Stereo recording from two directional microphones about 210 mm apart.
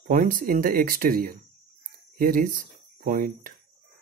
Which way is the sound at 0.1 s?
40° right (ahead or behind).